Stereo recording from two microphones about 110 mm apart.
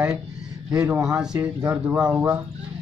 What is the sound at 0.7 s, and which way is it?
Speech, 15° right (ahead or behind).